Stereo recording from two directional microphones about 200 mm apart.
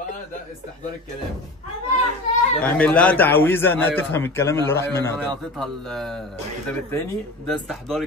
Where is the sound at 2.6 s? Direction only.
5° left (ahead or behind).